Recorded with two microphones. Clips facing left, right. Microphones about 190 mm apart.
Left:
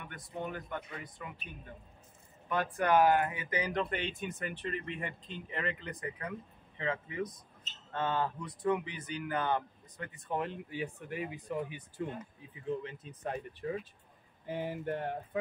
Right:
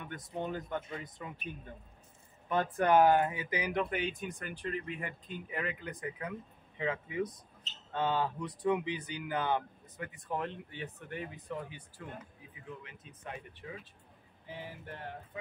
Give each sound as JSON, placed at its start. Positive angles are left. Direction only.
{"t": 0.1, "sound": "speech", "side_deg": -20}
{"t": 2.5, "sound": "speech", "side_deg": -25}
{"t": 10.1, "sound": "speech", "side_deg": 0}
{"t": 12.6, "sound": "speech", "side_deg": 30}
{"t": 14.5, "sound": "a sound", "side_deg": 50}